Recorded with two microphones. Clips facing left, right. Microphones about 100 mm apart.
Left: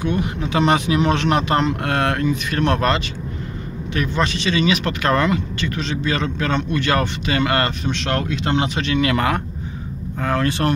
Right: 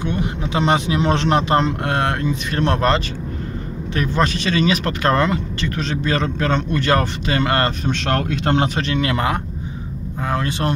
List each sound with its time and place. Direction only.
0.0 s speech: 25° right (ahead or behind)